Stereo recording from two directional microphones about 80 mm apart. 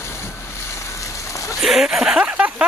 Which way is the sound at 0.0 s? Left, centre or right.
Left.